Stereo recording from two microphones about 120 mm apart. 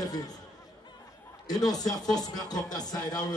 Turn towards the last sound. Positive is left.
turn(degrees=35)  # may be behind; listen again after turning